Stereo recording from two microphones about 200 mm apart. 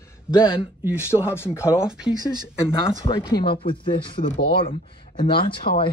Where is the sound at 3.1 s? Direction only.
25° left (ahead or behind).